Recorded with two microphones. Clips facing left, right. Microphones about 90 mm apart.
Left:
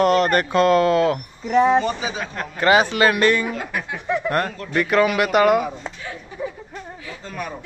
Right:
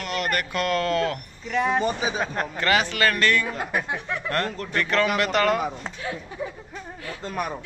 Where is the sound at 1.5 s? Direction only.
30° left (ahead or behind).